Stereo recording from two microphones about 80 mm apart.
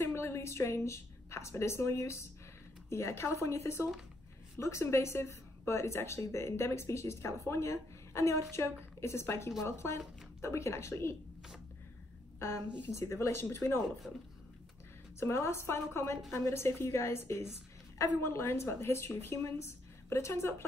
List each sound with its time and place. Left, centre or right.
0.0 s a woman's voice: left
12.4 s a woman's voice: left
14.0 s speech: centre
15.1 s a woman's voice: left